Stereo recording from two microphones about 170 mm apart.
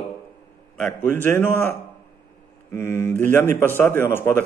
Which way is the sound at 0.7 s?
10° left (ahead or behind).